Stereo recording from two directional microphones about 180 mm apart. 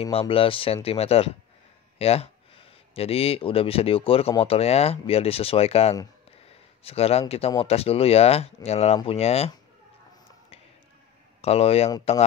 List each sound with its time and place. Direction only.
0.0 s speech: 30° left (ahead or behind)
11.4 s speech: 35° left (ahead or behind)